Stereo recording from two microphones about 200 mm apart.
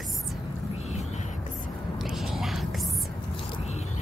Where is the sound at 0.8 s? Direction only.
35° left (ahead or behind).